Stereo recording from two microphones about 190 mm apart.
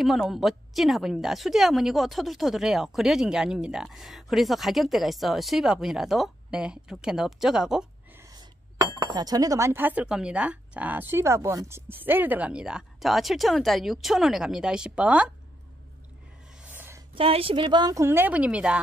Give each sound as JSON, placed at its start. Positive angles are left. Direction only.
{"t": 0.0, "sound": "a woman's voice", "side_deg": 0}
{"t": 9.0, "sound": "speech", "side_deg": -20}
{"t": 16.7, "sound": "a sound", "side_deg": -10}
{"t": 17.1, "sound": "a woman's voice", "side_deg": -30}